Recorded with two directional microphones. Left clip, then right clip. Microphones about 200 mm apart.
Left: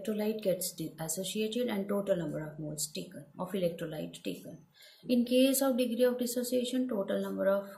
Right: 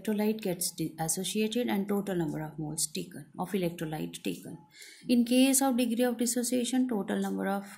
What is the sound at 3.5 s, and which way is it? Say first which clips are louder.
Speech: left 1 dB; 50° right (ahead or behind).